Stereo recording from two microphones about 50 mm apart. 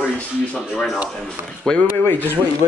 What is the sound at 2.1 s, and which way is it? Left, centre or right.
Speech, left.